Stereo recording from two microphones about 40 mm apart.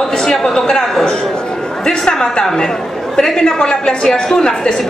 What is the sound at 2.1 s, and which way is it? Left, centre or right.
A man's voice, centre.